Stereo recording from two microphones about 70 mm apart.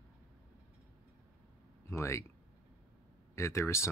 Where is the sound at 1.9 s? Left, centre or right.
Left.